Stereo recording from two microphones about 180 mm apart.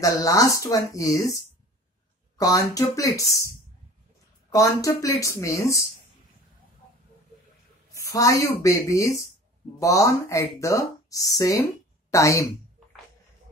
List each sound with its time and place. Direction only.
0.0 s speech: 20° left (ahead or behind)
4.5 s speech: 20° left (ahead or behind)
7.9 s speech: 20° left (ahead or behind)